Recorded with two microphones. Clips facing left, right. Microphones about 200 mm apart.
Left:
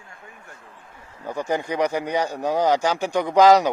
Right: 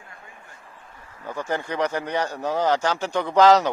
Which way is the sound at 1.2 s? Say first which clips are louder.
Left 3 dB; 15° left (ahead or behind).